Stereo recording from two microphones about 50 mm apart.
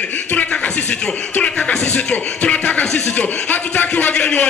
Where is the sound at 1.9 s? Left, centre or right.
Left.